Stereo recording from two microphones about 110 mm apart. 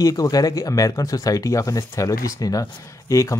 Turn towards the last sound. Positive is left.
turn(degrees=30)  # may be behind; listen again after turning